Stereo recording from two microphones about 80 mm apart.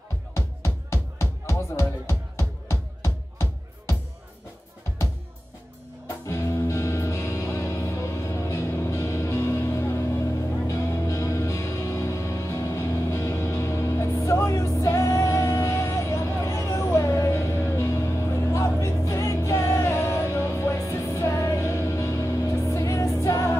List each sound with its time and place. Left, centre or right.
0.8 s music: left
6.0 s music: left